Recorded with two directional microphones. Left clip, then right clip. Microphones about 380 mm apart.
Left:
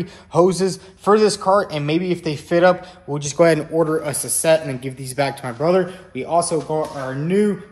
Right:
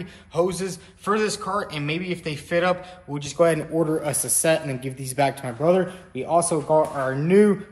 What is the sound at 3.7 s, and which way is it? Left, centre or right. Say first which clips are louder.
Speech: left 4 dB; centre.